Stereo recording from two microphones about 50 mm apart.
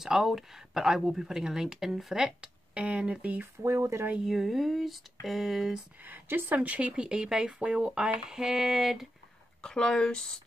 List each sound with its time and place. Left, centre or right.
0.0 s speech: centre
2.7 s speech: right
3.6 s speech: right
4.2 s speech: centre
6.0 s a woman's voice: right
6.6 s speech: right
6.9 s speech: centre
9.6 s speech: centre